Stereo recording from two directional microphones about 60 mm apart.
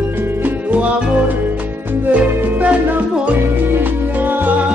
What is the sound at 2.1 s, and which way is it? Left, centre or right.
Music, right.